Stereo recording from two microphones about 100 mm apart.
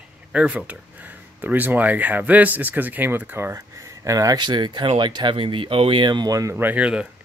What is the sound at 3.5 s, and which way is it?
Speech, 30° right (ahead or behind).